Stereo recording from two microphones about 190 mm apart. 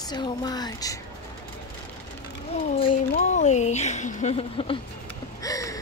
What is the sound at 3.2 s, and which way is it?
Speech, 40° left (ahead or behind).